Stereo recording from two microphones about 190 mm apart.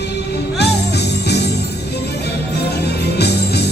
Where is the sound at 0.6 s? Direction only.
60° left (ahead or behind).